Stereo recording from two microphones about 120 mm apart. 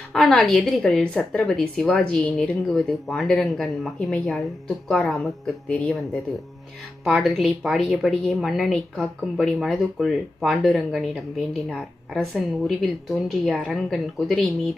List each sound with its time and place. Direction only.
0.1 s a woman's voice: 5° left (ahead or behind)